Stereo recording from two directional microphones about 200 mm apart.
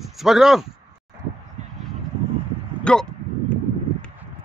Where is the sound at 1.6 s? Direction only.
35° right (ahead or behind).